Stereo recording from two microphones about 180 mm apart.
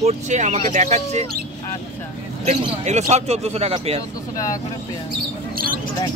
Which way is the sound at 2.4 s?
40° right (ahead or behind).